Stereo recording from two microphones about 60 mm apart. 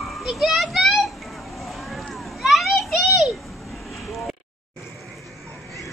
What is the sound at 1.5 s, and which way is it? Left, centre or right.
Vehicle, centre.